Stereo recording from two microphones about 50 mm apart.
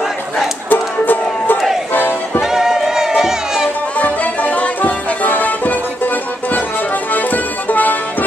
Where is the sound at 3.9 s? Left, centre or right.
Left.